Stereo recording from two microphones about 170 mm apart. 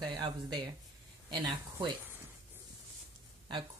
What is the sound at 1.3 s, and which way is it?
Speech, 25° right (ahead or behind).